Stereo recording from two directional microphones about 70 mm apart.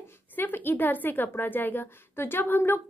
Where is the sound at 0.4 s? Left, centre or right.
Left.